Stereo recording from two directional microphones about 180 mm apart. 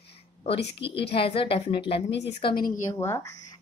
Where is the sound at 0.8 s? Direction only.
30° left (ahead or behind).